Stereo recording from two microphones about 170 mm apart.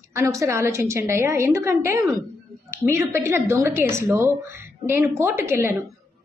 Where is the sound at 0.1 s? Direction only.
20° right (ahead or behind).